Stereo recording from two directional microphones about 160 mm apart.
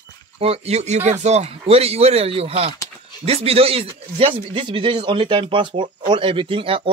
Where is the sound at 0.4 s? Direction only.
40° right (ahead or behind).